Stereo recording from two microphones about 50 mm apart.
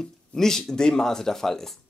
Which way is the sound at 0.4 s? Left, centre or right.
Centre.